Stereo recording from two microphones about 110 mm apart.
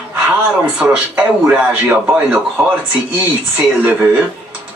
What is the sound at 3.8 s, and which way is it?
Speech, 15° right (ahead or behind).